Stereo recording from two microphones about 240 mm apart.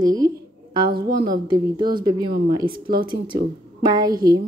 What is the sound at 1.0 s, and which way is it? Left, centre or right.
Speech, right.